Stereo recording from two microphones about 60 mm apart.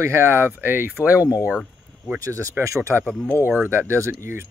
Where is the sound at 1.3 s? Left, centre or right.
Centre.